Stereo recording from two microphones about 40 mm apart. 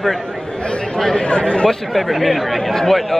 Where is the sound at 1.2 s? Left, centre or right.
Left.